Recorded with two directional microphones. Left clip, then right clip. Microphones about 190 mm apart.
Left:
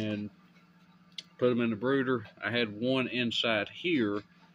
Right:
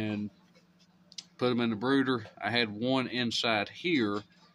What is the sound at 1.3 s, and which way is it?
Speech, 25° right (ahead or behind).